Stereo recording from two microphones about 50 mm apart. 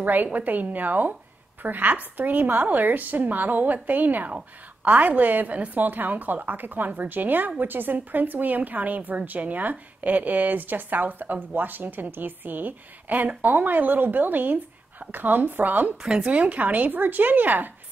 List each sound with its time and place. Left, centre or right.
0.0 s a woman's voice: right
16.2 s a woman's voice: right